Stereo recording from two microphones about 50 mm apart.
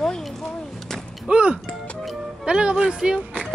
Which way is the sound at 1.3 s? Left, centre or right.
Right.